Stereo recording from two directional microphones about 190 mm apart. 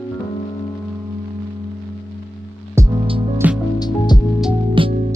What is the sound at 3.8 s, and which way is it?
Music, 20° left (ahead or behind).